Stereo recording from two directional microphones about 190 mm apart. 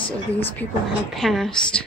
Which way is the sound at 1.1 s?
Centre (ahead or behind).